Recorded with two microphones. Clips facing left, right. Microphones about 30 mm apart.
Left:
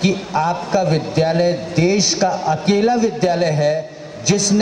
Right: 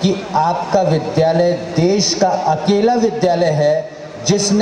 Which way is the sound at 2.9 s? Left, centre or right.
Right.